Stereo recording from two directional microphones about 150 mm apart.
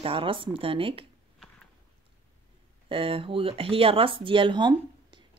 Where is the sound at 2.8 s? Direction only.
35° right (ahead or behind).